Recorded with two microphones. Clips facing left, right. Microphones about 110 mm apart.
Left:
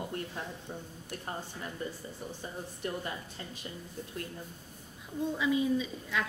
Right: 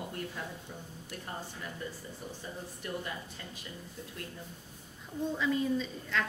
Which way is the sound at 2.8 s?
30° left (ahead or behind).